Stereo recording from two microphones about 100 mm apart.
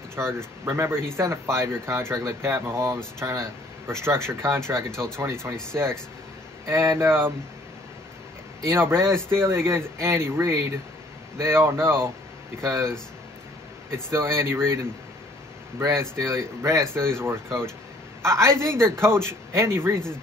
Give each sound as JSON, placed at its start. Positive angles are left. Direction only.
{"t": 0.7, "sound": "speech", "side_deg": -25}
{"t": 7.0, "sound": "speech", "side_deg": -20}
{"t": 8.6, "sound": "speech", "side_deg": -25}